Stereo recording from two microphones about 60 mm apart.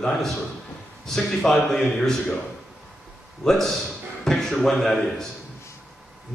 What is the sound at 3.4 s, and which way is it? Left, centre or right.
A man's voice, centre.